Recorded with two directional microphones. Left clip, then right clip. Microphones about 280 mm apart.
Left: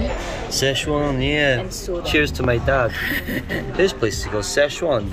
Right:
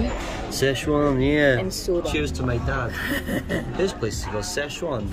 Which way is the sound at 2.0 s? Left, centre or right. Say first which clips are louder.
Left 6 dB; centre.